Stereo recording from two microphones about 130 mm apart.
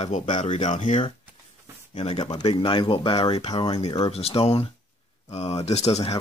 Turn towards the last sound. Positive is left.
turn(degrees=55)  # may be behind; listen again after turning